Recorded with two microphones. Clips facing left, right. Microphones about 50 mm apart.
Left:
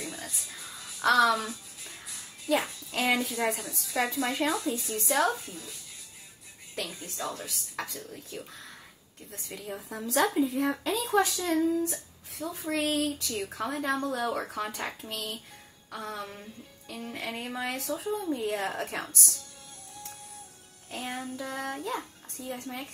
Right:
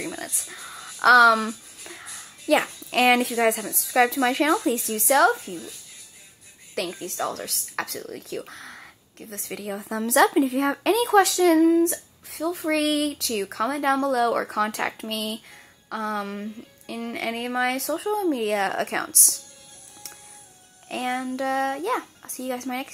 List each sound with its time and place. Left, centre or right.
0.1 s music: right
2.6 s speech: right
4.6 s speech: right
6.7 s speech: right
15.0 s speech: right
20.9 s speech: right